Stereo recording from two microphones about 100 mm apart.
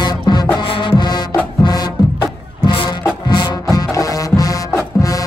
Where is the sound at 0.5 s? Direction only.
55° left (ahead or behind).